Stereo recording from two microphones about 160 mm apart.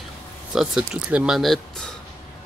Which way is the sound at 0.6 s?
5° right (ahead or behind).